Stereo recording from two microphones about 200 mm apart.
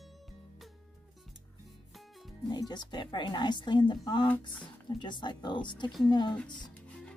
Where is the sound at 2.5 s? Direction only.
20° left (ahead or behind).